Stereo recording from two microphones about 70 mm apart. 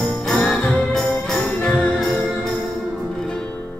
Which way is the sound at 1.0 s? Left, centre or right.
Centre.